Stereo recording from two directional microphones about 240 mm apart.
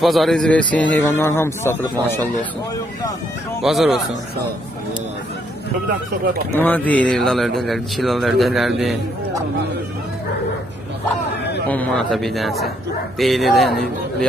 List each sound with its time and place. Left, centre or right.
0.0 s a man's voice: centre
3.6 s speech: centre
6.5 s speech: centre
11.6 s speech: centre